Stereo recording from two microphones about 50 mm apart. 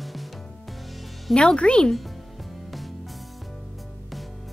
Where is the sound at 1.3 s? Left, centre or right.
Centre.